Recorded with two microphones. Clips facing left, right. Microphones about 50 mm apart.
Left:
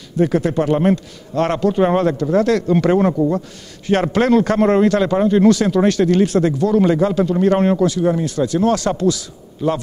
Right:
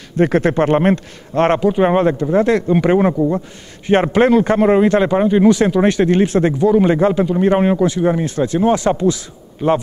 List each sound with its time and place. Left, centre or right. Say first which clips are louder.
0.2 s speech: right 3 dB; right
1.6 s a man's voice: right 2 dB; centre
4.6 s speech: right 2 dB; centre
4.8 s a man's voice: right 1 dB; right
7.2 s speech: right 1 dB; centre
7.9 s a man's voice: right 1 dB; right